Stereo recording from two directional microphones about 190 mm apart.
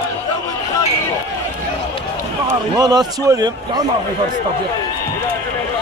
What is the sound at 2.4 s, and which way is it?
Speech, 20° right (ahead or behind).